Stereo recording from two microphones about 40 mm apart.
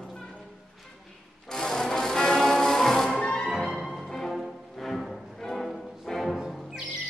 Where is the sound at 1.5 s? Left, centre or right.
Centre.